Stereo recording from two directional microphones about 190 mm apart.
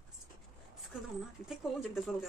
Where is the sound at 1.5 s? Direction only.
Centre (ahead or behind).